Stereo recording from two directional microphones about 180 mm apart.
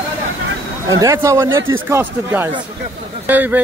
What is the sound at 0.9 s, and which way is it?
Speech, 15° right (ahead or behind).